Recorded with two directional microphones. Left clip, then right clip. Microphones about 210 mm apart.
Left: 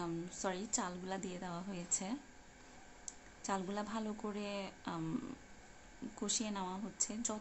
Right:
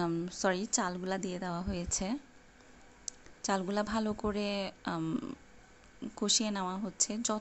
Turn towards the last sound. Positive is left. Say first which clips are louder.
# right 7 dB
turn(degrees=-25)  # may be behind; listen again after turning